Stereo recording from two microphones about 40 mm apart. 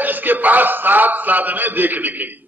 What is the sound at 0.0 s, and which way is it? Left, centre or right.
A man's voice, right.